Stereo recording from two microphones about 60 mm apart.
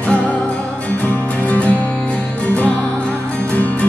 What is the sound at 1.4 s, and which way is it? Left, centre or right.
Music, left.